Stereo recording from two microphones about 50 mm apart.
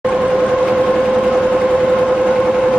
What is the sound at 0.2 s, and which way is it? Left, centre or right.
Vehicle, right.